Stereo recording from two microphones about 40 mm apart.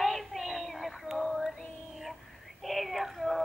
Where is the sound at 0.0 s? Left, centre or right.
Centre.